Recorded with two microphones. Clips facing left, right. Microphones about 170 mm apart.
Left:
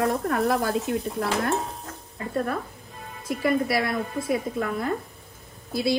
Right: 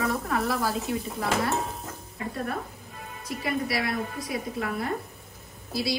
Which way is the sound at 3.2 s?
55° left (ahead or behind).